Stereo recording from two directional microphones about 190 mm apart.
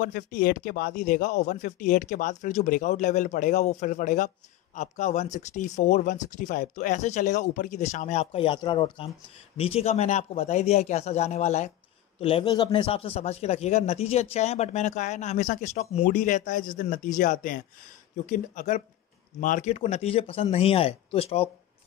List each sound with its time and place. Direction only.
0.0 s speech: 45° left (ahead or behind)